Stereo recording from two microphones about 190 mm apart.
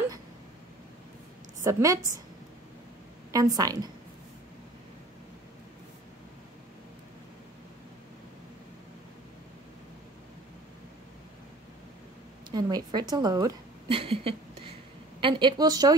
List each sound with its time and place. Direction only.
1.6 s a woman's voice: 15° right (ahead or behind)
3.3 s a woman's voice: 20° right (ahead or behind)
12.4 s a woman's voice: 20° right (ahead or behind)